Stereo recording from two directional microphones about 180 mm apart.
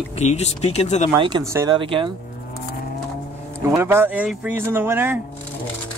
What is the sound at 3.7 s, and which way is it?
Speech, 15° right (ahead or behind).